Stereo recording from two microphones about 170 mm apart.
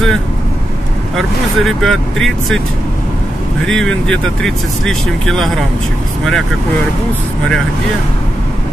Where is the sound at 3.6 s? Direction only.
5° left (ahead or behind).